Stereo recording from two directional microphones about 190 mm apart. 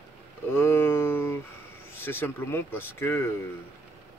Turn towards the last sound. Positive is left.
turn(degrees=10)  # may be behind; listen again after turning